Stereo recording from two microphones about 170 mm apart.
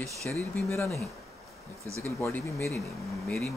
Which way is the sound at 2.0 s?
15° left (ahead or behind).